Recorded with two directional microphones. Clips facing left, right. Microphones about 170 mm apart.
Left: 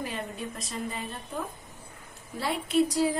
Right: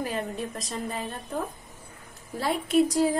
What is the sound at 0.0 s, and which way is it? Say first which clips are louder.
Speech: right 4 dB; 40° right (ahead or behind).